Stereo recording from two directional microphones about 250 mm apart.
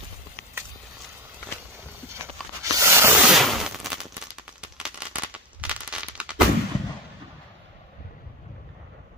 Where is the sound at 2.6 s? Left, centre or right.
Centre.